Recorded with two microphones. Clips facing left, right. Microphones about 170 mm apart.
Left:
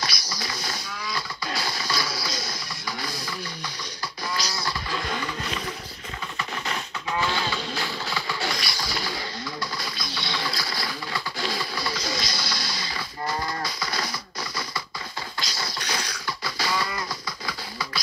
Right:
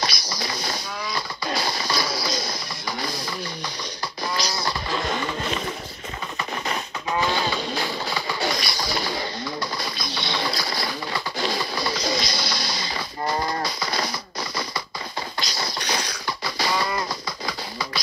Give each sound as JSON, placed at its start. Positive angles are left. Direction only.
{"t": 0.4, "sound": "a sound", "side_deg": -20}
{"t": 3.0, "sound": "music", "side_deg": -20}
{"t": 4.4, "sound": "vehicle", "side_deg": -20}
{"t": 6.7, "sound": "music", "side_deg": -15}
{"t": 13.6, "sound": "drum", "side_deg": -20}
{"t": 15.4, "sound": "a sound", "side_deg": -20}
{"t": 17.5, "sound": "music", "side_deg": -20}